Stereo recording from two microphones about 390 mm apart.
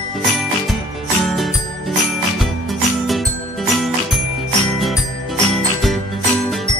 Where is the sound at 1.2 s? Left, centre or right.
Centre.